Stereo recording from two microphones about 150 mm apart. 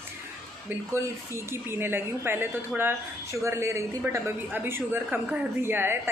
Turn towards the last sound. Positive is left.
turn(degrees=-15)  # may be behind; listen again after turning